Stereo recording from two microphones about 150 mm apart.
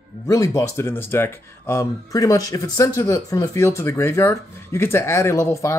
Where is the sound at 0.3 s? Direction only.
20° left (ahead or behind).